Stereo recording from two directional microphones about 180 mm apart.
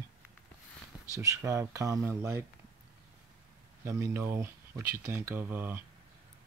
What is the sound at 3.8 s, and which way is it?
Speech, 15° right (ahead or behind).